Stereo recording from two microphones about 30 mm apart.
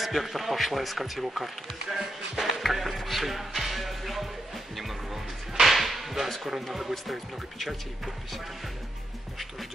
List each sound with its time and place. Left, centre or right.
0.0 s a man's voice: centre
2.4 s music: centre
6.4 s a man's voice: centre